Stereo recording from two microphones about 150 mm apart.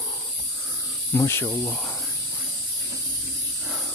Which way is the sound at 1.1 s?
15° left (ahead or behind).